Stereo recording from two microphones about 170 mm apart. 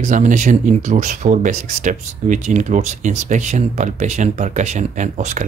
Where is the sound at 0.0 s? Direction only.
45° right (ahead or behind).